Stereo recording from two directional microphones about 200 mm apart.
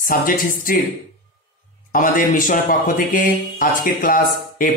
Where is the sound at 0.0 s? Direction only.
45° left (ahead or behind).